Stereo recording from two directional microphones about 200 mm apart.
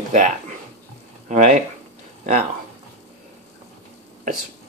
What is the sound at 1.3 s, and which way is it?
Speech, 40° right (ahead or behind).